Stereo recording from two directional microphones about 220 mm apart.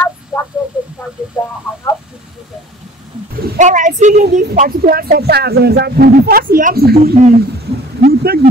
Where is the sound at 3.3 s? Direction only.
40° right (ahead or behind).